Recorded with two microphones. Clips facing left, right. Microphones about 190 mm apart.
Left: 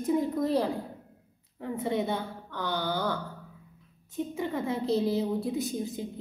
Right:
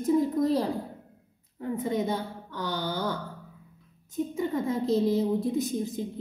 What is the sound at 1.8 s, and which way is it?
A woman's voice, 40° right (ahead or behind).